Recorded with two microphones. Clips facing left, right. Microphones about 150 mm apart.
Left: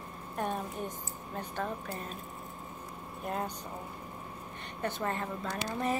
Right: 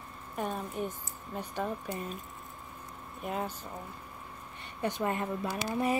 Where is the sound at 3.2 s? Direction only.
5° right (ahead or behind).